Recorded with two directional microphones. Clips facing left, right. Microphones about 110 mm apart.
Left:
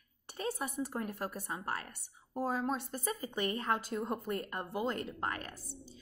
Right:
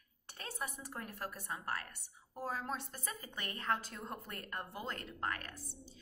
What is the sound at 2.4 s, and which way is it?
Speech, 15° left (ahead or behind).